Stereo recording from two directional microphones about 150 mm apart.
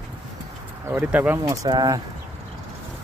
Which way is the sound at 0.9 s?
10° right (ahead or behind).